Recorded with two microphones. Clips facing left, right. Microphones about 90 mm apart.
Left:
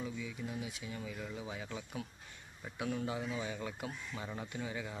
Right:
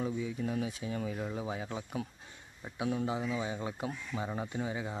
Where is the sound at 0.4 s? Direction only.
50° right (ahead or behind).